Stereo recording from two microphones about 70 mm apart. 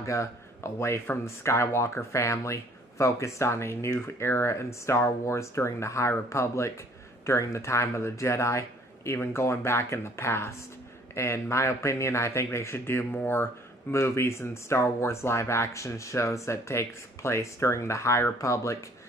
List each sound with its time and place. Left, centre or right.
0.0 s speech: left